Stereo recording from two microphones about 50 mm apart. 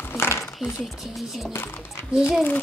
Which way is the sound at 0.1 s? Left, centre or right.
Left.